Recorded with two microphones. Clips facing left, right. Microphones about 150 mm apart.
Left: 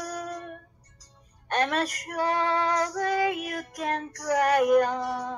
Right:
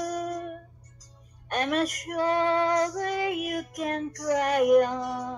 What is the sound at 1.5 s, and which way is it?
Female singing, 35° left (ahead or behind).